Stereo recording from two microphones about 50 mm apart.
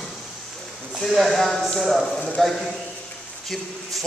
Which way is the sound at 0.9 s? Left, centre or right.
Centre.